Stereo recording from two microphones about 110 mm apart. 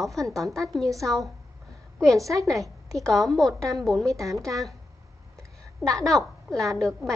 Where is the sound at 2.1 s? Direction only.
30° right (ahead or behind).